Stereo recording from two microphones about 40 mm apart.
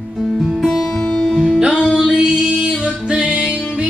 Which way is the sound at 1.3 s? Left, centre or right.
Centre.